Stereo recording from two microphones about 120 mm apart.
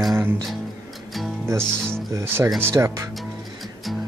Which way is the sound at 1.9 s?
20° right (ahead or behind).